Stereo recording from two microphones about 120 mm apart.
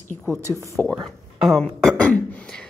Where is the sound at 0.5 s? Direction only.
25° left (ahead or behind).